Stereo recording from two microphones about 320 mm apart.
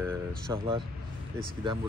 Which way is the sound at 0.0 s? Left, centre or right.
Centre.